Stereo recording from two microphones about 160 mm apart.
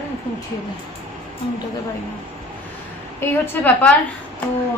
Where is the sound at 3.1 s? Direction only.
15° left (ahead or behind).